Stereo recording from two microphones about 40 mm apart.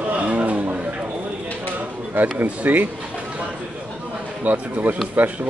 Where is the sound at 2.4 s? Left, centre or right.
Right.